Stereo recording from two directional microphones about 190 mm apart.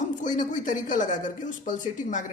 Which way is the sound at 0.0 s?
40° left (ahead or behind).